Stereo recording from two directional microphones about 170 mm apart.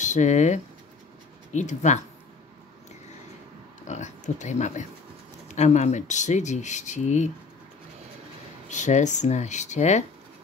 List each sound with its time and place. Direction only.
0.0 s speech: 45° left (ahead or behind)
3.8 s speech: 45° left (ahead or behind)
8.6 s speech: 45° left (ahead or behind)